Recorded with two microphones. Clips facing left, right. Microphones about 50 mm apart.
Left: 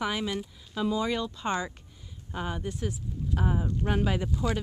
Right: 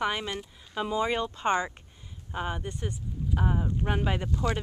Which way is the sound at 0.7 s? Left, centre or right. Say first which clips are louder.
Even; right.